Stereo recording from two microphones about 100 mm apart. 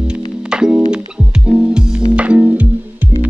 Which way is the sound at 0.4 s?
10° right (ahead or behind).